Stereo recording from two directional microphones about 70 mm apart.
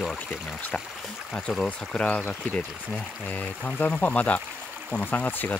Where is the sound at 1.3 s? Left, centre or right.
Centre.